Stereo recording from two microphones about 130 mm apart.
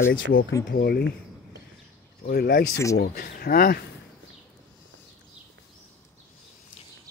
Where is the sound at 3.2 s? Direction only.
90° left.